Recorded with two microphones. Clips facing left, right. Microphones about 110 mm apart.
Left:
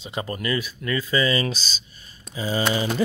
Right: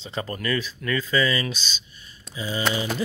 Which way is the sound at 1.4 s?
35° left (ahead or behind).